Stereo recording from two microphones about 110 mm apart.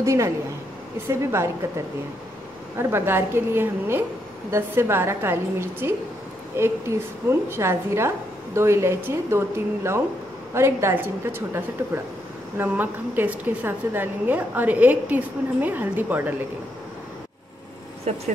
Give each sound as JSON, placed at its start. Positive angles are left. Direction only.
{"t": 0.0, "sound": "a woman's voice", "side_deg": -25}
{"t": 2.8, "sound": "a woman's voice", "side_deg": -20}
{"t": 10.5, "sound": "a woman's voice", "side_deg": -25}
{"t": 18.1, "sound": "speech", "side_deg": -80}